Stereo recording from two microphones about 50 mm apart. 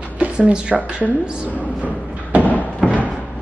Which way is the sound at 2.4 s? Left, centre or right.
Left.